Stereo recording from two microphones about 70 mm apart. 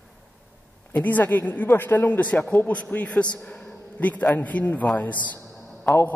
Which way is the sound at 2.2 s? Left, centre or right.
Centre.